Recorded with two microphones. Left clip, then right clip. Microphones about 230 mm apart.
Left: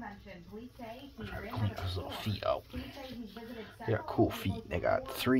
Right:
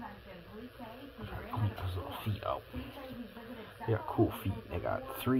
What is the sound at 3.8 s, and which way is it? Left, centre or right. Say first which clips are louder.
Speech: left 1 dB; left.